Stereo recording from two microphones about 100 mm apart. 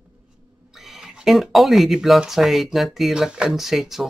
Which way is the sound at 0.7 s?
5° right (ahead or behind).